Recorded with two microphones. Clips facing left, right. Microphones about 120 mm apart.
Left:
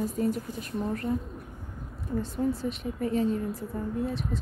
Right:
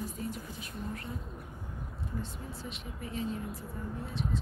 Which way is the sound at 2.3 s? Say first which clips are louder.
Left 14 dB; 40° left (ahead or behind).